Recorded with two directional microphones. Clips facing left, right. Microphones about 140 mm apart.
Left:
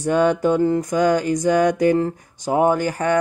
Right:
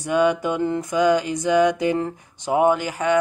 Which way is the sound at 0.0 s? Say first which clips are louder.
Left 2 dB; 45° left (ahead or behind).